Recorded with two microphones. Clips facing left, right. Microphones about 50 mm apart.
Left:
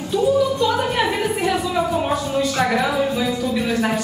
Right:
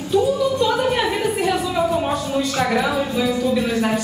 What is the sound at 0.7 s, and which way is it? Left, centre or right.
A woman's voice, centre.